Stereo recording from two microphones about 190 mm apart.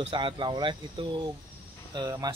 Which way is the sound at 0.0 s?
25° right (ahead or behind).